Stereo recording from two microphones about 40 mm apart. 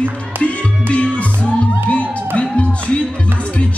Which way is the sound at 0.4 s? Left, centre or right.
Left.